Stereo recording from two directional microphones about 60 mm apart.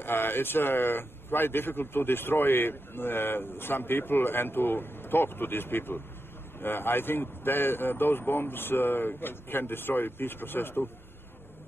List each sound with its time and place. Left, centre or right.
0.0 s speech: left